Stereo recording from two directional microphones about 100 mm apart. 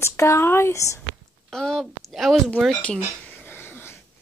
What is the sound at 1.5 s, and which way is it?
A woman's voice, 5° left (ahead or behind).